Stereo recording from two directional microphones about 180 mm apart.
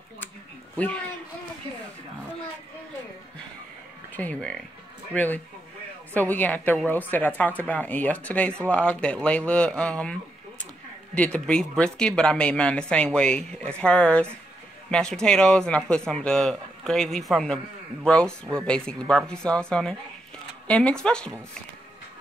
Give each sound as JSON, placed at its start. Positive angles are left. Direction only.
{"t": 0.7, "sound": "speech", "side_deg": 10}
{"t": 4.1, "sound": "speech", "side_deg": 10}
{"t": 11.1, "sound": "speech", "side_deg": 5}